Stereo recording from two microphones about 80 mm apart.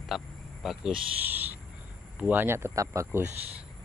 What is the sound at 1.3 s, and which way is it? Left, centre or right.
Owl, right.